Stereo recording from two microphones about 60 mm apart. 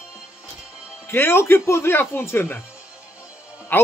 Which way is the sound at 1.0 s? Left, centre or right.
Left.